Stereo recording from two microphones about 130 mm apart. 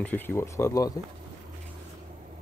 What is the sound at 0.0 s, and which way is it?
Speech, 15° left (ahead or behind).